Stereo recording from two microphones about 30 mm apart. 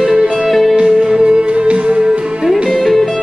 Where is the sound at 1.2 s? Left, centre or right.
Right.